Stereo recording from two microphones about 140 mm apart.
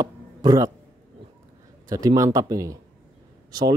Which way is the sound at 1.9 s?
25° right (ahead or behind).